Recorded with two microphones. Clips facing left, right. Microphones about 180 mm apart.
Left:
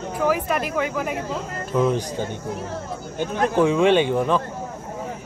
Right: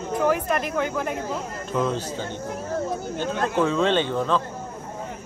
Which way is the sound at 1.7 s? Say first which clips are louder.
Left 4 dB; 10° left (ahead or behind).